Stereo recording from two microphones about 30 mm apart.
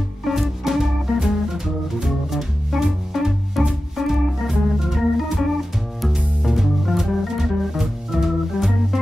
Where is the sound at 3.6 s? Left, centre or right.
Centre.